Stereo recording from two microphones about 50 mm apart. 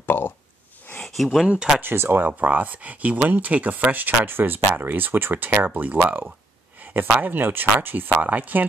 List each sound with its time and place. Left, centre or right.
0.0 s speech: left
1.0 s speech: centre
1.8 s speech: right
8.2 s speech: right